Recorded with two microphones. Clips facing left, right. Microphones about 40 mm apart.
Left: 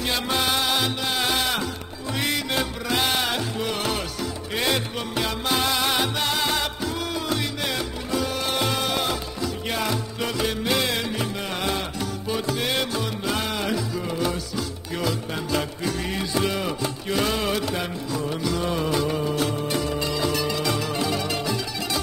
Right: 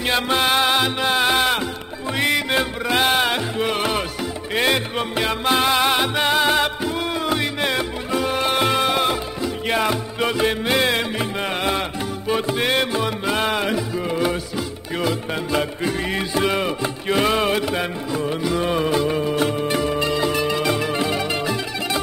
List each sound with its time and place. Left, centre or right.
0.0 s music: right